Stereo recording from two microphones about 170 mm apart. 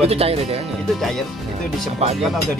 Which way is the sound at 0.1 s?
35° right (ahead or behind).